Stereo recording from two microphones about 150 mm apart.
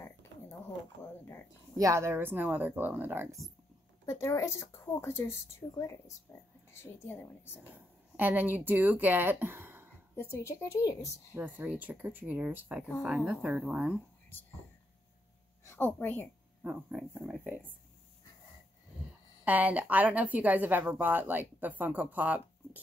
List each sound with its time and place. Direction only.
1.0 s a woman's voice: 15° left (ahead or behind)
1.8 s a woman's voice: 20° right (ahead or behind)
4.0 s a woman's voice: 20° left (ahead or behind)
8.2 s a woman's voice: 15° right (ahead or behind)
10.3 s speech: 20° left (ahead or behind)
11.3 s a woman's voice: 15° right (ahead or behind)
15.6 s a woman's voice: 15° left (ahead or behind)
16.9 s a woman's voice: 5° right (ahead or behind)
19.4 s a woman's voice: 10° right (ahead or behind)